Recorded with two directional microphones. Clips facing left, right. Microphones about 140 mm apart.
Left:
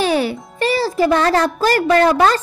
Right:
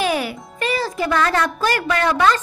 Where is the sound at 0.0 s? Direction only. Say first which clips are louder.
Left 4 dB; 30° left (ahead or behind).